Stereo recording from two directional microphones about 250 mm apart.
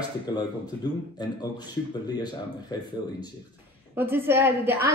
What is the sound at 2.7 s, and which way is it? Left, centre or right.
Speech, centre.